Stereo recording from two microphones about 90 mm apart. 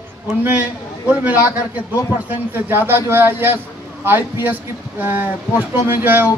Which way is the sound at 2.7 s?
25° right (ahead or behind).